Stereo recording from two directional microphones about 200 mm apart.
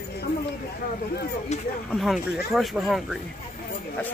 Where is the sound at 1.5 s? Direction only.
35° left (ahead or behind).